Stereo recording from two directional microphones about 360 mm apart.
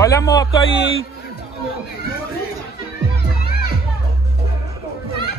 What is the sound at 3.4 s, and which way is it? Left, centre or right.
Music, left.